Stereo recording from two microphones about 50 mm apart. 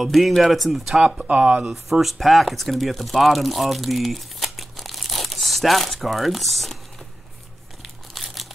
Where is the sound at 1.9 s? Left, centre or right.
Centre.